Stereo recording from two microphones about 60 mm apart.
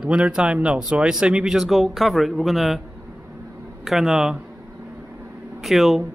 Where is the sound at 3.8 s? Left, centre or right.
Centre.